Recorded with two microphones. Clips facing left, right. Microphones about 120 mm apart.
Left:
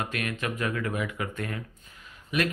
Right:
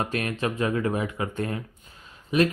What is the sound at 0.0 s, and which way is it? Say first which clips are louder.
Speech: right 4 dB; 30° right (ahead or behind).